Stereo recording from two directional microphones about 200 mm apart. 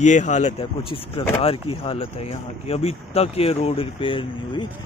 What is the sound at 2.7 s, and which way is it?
Speech, 30° left (ahead or behind).